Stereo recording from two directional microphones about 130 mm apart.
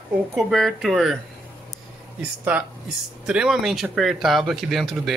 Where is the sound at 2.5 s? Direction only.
10° right (ahead or behind).